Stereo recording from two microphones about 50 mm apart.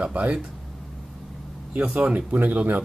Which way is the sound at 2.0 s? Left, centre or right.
Right.